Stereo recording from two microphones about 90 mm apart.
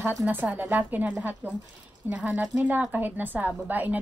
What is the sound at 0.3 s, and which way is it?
A woman's voice, 20° right (ahead or behind).